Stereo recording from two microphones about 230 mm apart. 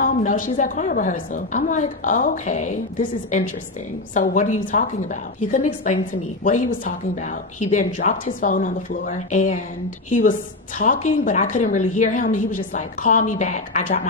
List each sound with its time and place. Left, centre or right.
0.0 s a woman's voice: left
7.7 s a woman's voice: left